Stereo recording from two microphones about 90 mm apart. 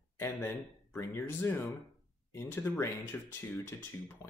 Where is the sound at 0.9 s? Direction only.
30° left (ahead or behind).